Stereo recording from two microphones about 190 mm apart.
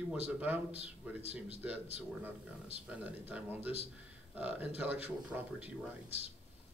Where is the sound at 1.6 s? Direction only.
5° right (ahead or behind).